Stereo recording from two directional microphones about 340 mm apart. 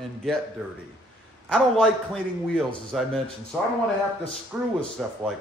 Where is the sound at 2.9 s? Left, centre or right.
Centre.